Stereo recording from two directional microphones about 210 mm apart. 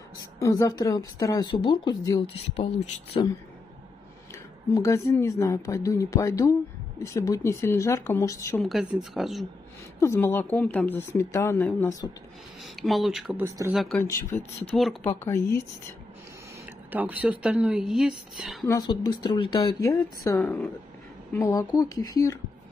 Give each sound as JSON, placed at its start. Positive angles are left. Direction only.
{"t": 0.2, "sound": "speech", "side_deg": 15}
{"t": 8.6, "sound": "speech", "side_deg": 0}
{"t": 9.9, "sound": "speech", "side_deg": 10}
{"t": 12.8, "sound": "speech", "side_deg": 0}
{"t": 13.5, "sound": "speech", "side_deg": -15}
{"t": 13.9, "sound": "speech", "side_deg": 10}
{"t": 16.6, "sound": "speech", "side_deg": -10}
{"t": 18.7, "sound": "speech", "side_deg": 20}